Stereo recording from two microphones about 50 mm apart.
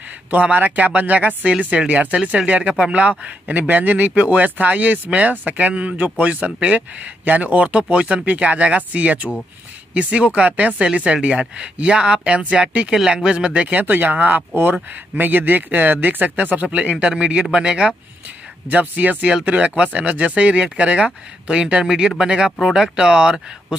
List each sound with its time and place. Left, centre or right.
0.3 s speech: right
14.5 s speech: right
16.9 s speech: centre